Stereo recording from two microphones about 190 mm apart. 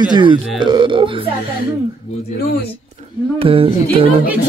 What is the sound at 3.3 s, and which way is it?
Speech, 30° right (ahead or behind).